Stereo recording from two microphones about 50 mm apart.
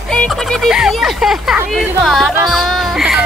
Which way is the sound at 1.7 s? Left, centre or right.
Centre.